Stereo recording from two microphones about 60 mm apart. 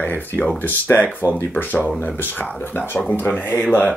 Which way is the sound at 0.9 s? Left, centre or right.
Left.